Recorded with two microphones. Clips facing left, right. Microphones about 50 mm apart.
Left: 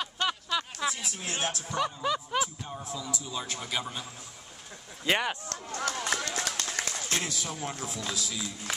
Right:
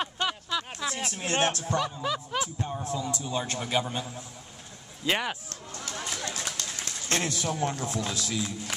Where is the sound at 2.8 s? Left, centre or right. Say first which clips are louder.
Right 3 dB; right.